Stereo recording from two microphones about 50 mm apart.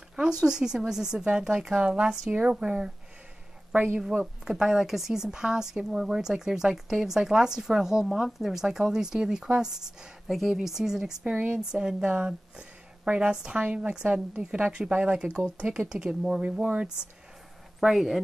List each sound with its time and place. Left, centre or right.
0.1 s speech: centre
3.7 s speech: right
4.5 s speech: centre
10.3 s speech: centre; by 16.8 s right
17.7 s speech: centre